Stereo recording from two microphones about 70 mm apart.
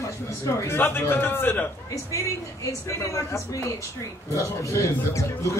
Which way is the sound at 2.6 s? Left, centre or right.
Left.